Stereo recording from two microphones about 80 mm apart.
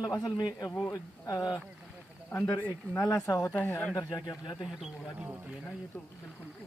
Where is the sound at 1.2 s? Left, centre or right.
Left.